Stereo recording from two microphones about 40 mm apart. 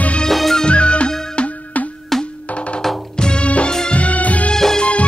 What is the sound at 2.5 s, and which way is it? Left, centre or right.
Music, left.